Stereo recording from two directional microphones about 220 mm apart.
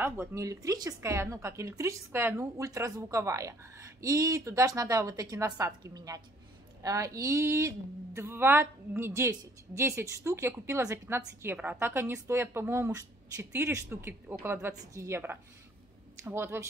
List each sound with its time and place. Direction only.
0.0 s speech: 10° right (ahead or behind)